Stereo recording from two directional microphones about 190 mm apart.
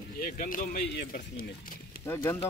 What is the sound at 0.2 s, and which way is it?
Speech, 45° left (ahead or behind).